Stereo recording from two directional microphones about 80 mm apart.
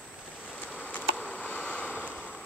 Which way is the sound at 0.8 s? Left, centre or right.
Centre.